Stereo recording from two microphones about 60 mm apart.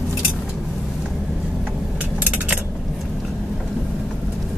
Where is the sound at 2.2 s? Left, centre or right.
Right.